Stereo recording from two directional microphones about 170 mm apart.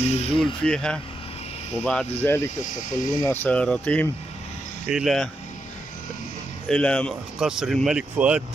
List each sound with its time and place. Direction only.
0.0 s speech: 40° left (ahead or behind)
0.7 s speech: 5° left (ahead or behind)
2.6 s speech: 50° left (ahead or behind)
3.2 s speech: 10° left (ahead or behind)
6.7 s speech: 5° left (ahead or behind)
7.3 s speech: 5° right (ahead or behind)